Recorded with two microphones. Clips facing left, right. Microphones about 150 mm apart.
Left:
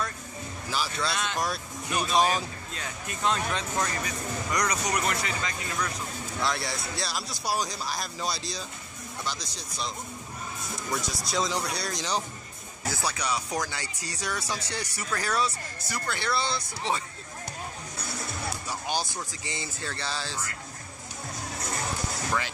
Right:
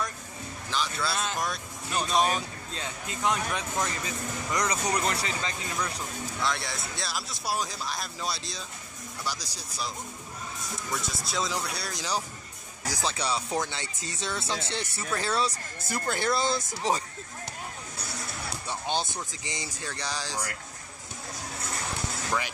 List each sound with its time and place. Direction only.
0.7 s speech: 5° left (ahead or behind)
2.7 s speech: 20° right (ahead or behind)
4.0 s speech: 25° right (ahead or behind)
6.4 s speech: centre (ahead or behind)
11.0 s speech: centre (ahead or behind)
12.8 s speech: 15° right (ahead or behind)
13.1 s speech: 30° right (ahead or behind)
15.9 s speech: 45° right (ahead or behind)
18.7 s speech: 25° right (ahead or behind)